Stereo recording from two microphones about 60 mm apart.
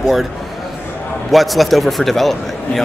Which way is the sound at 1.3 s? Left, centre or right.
Centre.